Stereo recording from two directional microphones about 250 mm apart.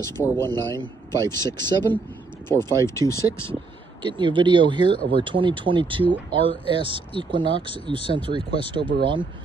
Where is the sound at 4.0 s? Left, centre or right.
Centre.